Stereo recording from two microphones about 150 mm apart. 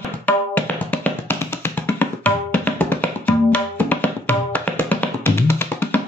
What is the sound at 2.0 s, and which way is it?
Tabla, 10° left (ahead or behind).